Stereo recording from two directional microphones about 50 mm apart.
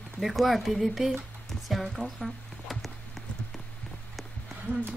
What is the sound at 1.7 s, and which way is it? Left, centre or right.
Music, centre.